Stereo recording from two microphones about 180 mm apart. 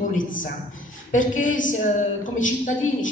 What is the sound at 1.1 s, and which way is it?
A woman's voice, 45° left (ahead or behind).